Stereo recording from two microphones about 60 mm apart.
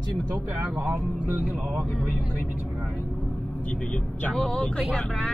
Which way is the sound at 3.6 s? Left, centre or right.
Left.